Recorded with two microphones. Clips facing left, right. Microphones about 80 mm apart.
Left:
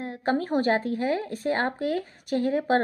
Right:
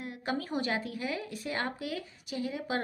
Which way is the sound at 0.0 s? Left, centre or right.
Left.